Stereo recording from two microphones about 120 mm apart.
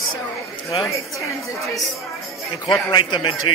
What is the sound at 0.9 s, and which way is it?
Speech, 25° left (ahead or behind).